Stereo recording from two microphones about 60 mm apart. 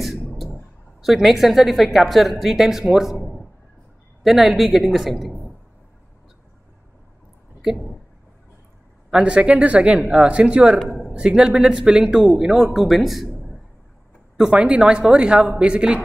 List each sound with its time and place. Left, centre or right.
1.0 s a woman's voice: centre
9.1 s speech: centre
10.9 s a sound: centre
11.1 s speech: centre
14.3 s speech: centre